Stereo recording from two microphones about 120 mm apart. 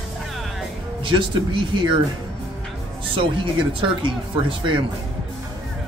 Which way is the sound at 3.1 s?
45° right (ahead or behind).